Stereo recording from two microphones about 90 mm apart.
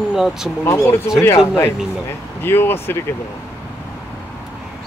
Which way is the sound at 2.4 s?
25° left (ahead or behind).